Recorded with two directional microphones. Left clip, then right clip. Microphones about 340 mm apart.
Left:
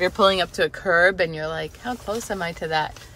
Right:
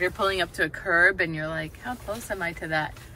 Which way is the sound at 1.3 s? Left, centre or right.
Centre.